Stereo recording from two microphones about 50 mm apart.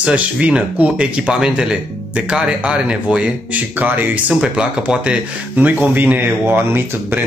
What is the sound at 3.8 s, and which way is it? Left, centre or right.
Speech, right.